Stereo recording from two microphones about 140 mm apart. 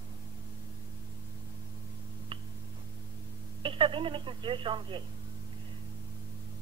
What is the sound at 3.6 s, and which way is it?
Speech, 35° right (ahead or behind).